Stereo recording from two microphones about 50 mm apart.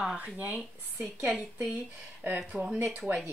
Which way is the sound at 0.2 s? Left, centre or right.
Right.